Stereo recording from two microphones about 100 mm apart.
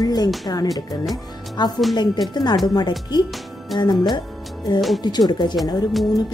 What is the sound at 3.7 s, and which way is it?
Speech, centre (ahead or behind).